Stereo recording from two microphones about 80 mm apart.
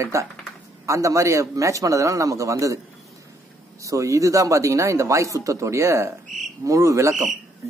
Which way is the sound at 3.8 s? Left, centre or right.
Right.